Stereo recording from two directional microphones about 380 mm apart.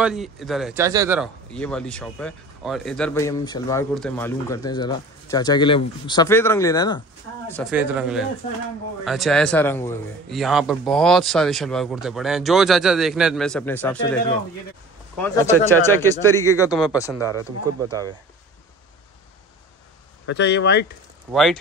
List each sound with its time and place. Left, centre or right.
0.0 s a man's voice: centre
20.2 s speech: left
21.3 s a man's voice: centre